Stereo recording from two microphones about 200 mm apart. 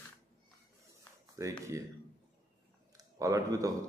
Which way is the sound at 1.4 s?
15° right (ahead or behind).